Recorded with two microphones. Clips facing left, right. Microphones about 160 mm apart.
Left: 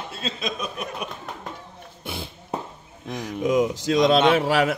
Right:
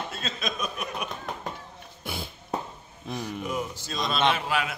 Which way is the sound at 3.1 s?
90° left.